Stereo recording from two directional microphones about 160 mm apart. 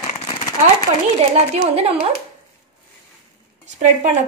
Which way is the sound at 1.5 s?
40° right (ahead or behind).